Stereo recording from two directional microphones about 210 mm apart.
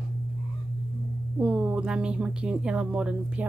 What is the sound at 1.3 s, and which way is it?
Speech, 5° right (ahead or behind).